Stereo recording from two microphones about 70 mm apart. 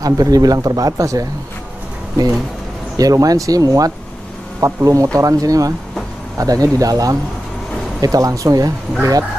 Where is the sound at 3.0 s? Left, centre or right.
Right.